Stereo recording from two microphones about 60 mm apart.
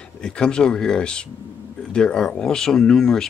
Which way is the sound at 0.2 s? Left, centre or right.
Centre.